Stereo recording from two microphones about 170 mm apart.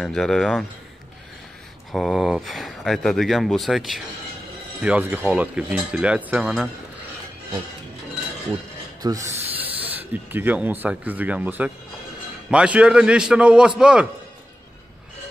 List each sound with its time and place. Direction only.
0.0 s speech: centre (ahead or behind)
1.9 s speech: centre (ahead or behind)
9.0 s speech: 20° right (ahead or behind)